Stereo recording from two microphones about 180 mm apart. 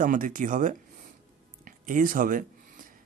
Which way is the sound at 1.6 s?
50° right (ahead or behind).